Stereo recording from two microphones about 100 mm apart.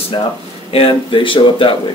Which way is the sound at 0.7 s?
60° left (ahead or behind).